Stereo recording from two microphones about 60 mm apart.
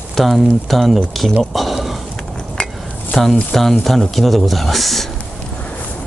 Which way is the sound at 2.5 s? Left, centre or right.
Centre.